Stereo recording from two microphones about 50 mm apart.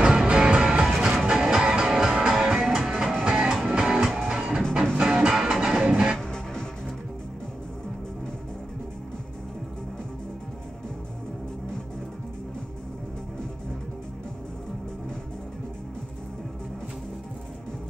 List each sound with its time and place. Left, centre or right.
0.0 s music: centre
3.3 s music: centre
6.1 s music: centre